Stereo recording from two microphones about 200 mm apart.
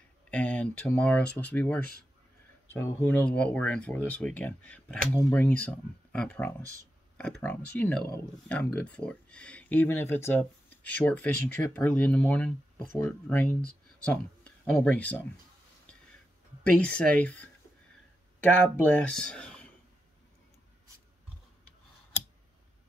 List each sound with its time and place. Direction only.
0.3 s speech: 5° left (ahead or behind)
17.2 s speech: 10° left (ahead or behind)
18.5 s speech: 5° left (ahead or behind)